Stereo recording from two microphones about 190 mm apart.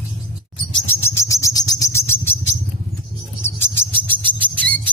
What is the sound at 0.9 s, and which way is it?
Bird, 15° left (ahead or behind).